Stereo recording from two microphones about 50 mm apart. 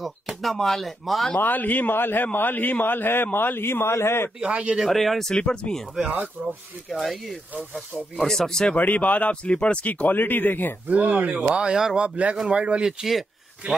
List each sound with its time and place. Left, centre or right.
0.0 s speech: centre
1.4 s a man's voice: left
4.4 s speech: right
4.7 s speech: centre
5.3 s speech: centre
6.4 s speech: right
6.9 s speech: centre
8.7 s speech: left
10.9 s speech: right
11.4 s a man's voice: centre